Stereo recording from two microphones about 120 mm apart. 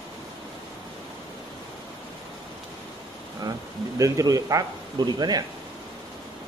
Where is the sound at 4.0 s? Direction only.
30° right (ahead or behind).